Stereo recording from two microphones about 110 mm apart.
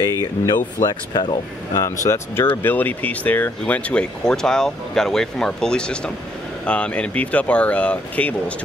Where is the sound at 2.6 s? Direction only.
15° left (ahead or behind).